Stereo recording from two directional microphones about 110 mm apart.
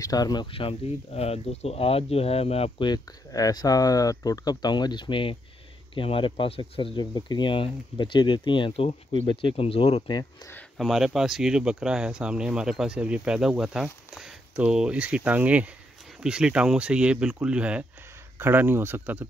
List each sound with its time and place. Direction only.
0.0 s speech: 35° left (ahead or behind)
0.5 s speech: 55° left (ahead or behind)
2.8 s speech: 40° left (ahead or behind); by 10.0 s 65° left (ahead or behind)
10.0 s speech: 40° left (ahead or behind)
10.8 s speech: centre (ahead or behind); by 19.2 s 20° right (ahead or behind)